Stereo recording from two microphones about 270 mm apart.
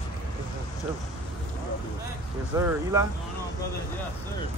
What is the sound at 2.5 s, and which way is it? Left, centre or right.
Speech, centre.